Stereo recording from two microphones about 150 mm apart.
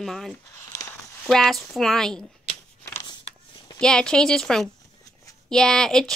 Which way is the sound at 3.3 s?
45° left (ahead or behind).